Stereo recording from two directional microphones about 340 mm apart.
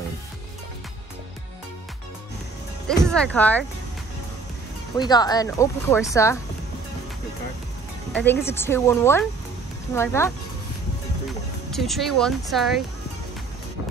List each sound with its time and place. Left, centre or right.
3.0 s speech: centre
4.9 s speech: centre
8.1 s speech: centre
11.7 s speech: centre